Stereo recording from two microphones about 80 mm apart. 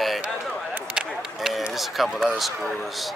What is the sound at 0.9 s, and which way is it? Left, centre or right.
Run, centre.